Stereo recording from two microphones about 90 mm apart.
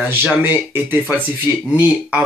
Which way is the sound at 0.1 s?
20° right (ahead or behind).